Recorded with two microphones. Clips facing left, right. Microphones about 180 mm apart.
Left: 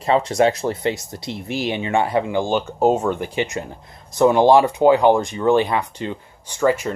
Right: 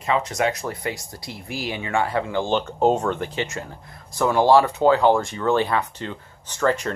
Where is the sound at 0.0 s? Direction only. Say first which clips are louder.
Left 6 dB; 30° left (ahead or behind).